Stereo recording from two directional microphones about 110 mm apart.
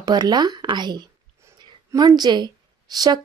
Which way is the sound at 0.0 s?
40° right (ahead or behind).